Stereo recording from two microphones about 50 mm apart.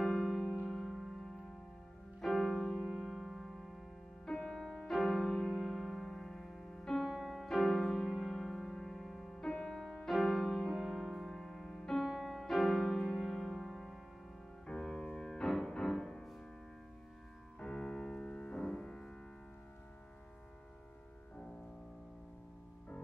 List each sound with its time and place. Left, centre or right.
0.0 s music: centre
2.2 s music: centre
4.3 s music: centre
7.1 s music: centre
7.3 s music: centre
9.4 s music: centre
17.6 s music: centre